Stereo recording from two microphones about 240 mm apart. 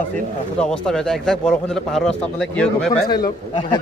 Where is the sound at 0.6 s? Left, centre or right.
Centre.